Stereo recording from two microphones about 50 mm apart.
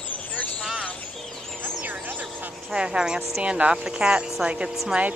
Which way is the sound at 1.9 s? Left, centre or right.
Right.